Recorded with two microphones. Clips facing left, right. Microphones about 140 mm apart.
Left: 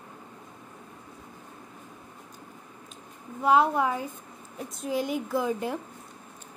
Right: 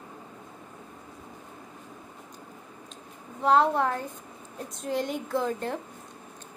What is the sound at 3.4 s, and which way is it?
A woman's voice, 5° left (ahead or behind).